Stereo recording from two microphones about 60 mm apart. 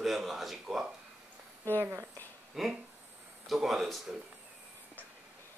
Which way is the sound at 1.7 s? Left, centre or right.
Right.